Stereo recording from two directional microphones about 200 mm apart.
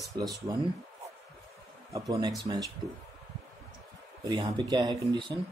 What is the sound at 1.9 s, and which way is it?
Speech, 15° right (ahead or behind).